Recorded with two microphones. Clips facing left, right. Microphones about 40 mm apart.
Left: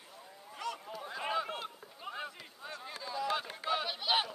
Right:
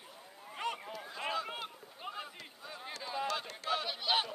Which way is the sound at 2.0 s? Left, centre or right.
Centre.